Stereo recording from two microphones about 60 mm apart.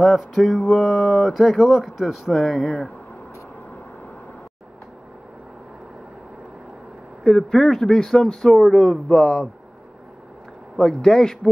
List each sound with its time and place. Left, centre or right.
0.0 s speech: centre
7.2 s speech: centre
10.8 s speech: centre